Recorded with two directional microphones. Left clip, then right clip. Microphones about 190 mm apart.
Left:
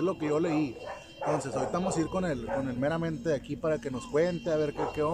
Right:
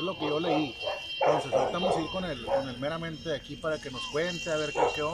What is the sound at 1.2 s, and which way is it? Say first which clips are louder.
Speech: right 5 dB; 25° right (ahead or behind).